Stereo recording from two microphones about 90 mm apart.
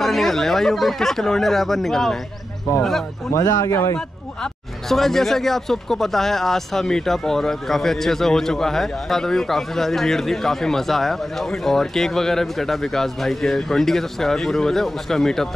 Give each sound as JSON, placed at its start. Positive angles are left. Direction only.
{"t": 0.0, "sound": "speech", "side_deg": 0}
{"t": 3.3, "sound": "speech", "side_deg": 35}
{"t": 4.4, "sound": "speech", "side_deg": 5}